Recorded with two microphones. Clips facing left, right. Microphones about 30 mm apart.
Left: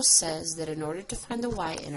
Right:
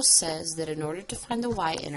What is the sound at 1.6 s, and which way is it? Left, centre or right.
Speech, right.